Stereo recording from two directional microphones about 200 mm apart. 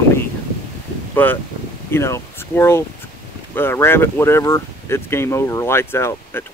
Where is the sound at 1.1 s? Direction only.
10° left (ahead or behind).